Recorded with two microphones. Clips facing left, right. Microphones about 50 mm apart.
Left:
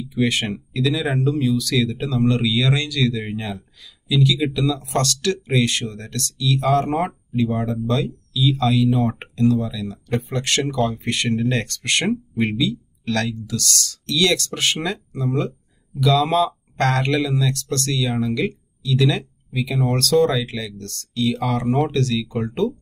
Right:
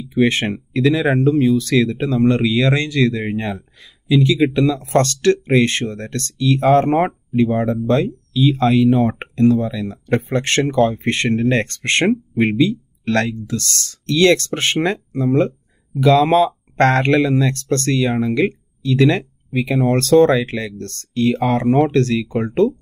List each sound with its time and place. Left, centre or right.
0.1 s speech: right